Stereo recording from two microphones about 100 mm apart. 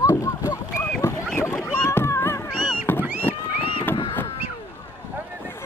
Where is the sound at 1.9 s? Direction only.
25° left (ahead or behind).